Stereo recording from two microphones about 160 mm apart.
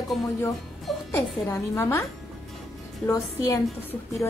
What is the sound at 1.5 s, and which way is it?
Speech, 15° left (ahead or behind).